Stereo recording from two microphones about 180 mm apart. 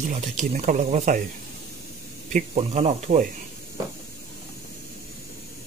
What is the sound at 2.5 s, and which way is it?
Speech, 40° right (ahead or behind).